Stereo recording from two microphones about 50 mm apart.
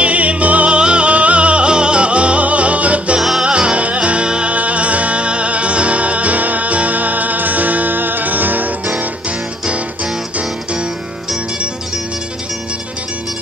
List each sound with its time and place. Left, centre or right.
0.0 s music: right
3.2 s music: centre
3.4 s music: right